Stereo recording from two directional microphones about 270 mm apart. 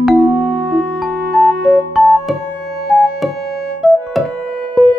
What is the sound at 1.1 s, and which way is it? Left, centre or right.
Music, right.